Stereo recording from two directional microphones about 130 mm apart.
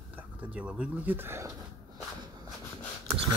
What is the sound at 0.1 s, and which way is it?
Speech, 10° right (ahead or behind).